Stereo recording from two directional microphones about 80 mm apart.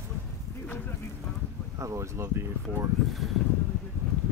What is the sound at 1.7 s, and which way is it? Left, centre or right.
Speech, right.